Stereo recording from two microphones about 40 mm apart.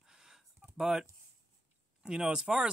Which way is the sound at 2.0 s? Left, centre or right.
Right.